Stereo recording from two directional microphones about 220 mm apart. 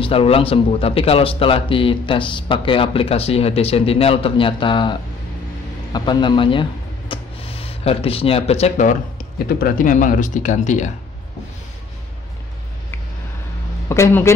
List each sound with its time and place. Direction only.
0.0 s a man's voice: 25° left (ahead or behind)
5.9 s speech: 20° left (ahead or behind)
13.8 s speech: 10° left (ahead or behind)